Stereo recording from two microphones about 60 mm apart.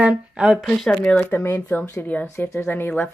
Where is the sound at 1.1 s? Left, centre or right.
Left.